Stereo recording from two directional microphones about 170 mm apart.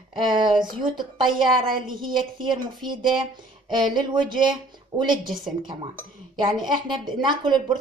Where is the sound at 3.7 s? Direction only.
25° right (ahead or behind).